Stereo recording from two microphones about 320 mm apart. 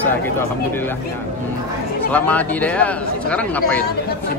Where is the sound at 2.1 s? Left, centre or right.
Centre.